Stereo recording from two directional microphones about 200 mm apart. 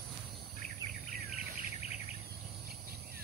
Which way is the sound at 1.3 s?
35° left (ahead or behind).